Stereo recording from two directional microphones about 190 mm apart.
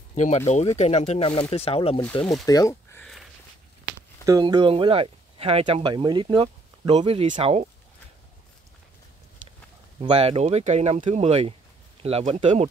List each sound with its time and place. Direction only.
0.1 s speech: 40° left (ahead or behind)
2.4 s speech: 15° left (ahead or behind)
4.3 s speech: 20° right (ahead or behind)
9.9 s speech: 30° right (ahead or behind)